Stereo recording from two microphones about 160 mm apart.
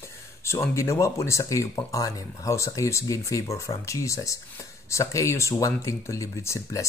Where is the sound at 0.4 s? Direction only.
15° left (ahead or behind).